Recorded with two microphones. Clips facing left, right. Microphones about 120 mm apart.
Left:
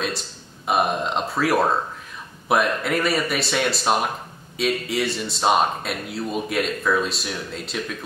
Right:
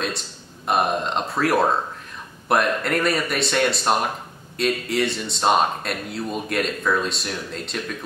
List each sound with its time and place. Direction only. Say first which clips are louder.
0.7 s speech: even; centre (ahead or behind)